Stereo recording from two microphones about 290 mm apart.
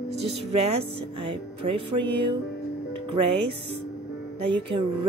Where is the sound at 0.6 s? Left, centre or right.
Right.